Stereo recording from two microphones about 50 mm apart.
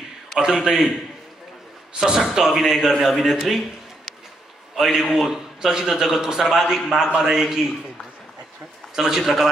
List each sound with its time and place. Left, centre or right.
0.4 s a man's voice: centre
2.0 s a man's voice: centre
8.9 s a man's voice: centre